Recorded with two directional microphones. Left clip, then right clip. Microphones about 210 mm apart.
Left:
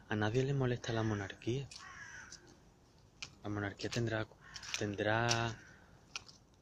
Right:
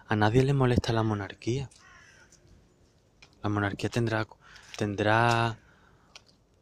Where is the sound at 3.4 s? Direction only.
50° right (ahead or behind).